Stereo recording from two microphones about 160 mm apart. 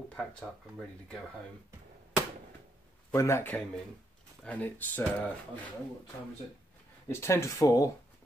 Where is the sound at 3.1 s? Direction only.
20° left (ahead or behind).